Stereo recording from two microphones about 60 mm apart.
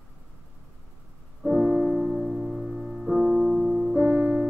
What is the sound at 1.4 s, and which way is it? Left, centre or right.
Piano, centre.